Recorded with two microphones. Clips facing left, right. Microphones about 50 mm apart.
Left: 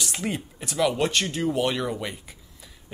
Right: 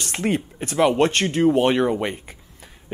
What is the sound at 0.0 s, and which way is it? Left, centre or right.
Speech, right.